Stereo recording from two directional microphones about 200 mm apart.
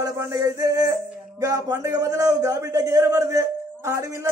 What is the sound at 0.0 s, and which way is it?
Speech, 15° right (ahead or behind).